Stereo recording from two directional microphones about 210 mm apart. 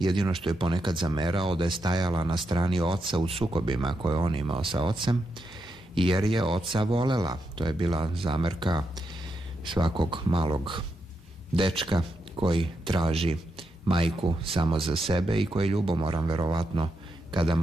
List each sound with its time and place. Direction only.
0.0 s speech: 20° right (ahead or behind)